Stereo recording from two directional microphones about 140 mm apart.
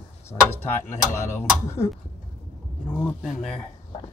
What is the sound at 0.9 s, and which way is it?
Speech, 20° left (ahead or behind).